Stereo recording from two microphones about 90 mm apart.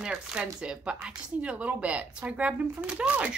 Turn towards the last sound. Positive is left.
turn(degrees=-10)  # may be behind; listen again after turning